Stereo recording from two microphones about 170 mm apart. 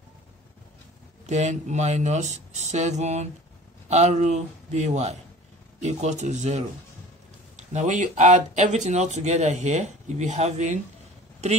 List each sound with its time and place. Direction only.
1.2 s speech: 45° right (ahead or behind)